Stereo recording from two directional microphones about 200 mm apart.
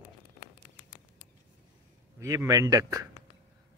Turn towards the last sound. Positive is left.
turn(degrees=-15)  # may be behind; listen again after turning